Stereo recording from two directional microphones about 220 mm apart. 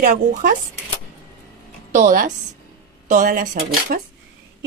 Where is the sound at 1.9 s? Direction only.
35° right (ahead or behind).